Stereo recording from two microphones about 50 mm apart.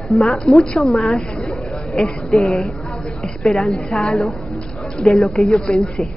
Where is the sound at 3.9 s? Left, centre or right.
Centre.